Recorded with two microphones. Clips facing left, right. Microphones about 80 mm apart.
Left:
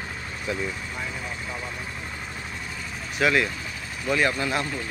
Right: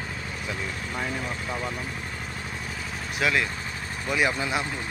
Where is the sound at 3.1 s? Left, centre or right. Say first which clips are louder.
Left 3 dB; centre.